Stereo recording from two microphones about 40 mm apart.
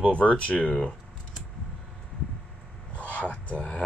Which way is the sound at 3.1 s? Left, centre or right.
Left.